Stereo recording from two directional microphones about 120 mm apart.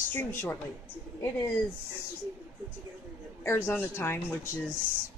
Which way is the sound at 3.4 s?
20° left (ahead or behind).